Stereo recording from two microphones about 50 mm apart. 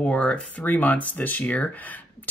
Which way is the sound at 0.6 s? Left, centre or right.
Left.